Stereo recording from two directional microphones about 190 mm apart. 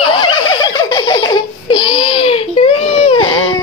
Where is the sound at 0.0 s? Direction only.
25° left (ahead or behind).